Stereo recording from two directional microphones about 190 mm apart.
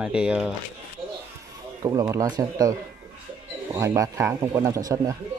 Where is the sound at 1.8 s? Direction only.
15° right (ahead or behind).